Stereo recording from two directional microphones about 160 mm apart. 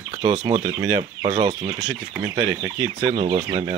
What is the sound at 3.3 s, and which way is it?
Speech, 30° right (ahead or behind).